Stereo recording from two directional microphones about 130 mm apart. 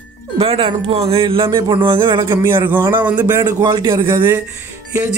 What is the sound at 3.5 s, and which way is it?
Speech, 35° right (ahead or behind).